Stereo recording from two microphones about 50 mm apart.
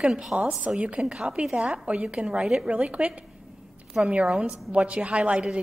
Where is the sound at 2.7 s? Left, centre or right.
Right.